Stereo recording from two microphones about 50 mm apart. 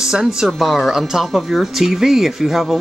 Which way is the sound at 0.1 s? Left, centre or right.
Centre.